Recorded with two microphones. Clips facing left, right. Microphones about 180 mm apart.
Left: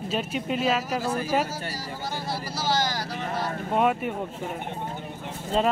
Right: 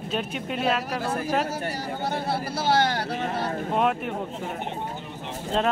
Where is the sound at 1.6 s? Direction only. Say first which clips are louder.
Right 4 dB; 65° right (ahead or behind).